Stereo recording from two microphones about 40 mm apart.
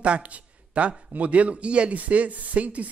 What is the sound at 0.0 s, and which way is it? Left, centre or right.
A man's voice, right.